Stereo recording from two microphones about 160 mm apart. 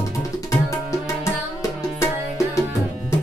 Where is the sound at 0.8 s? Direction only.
20° left (ahead or behind).